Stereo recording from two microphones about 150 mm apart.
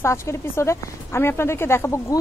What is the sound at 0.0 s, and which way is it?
A woman's voice, 20° left (ahead or behind).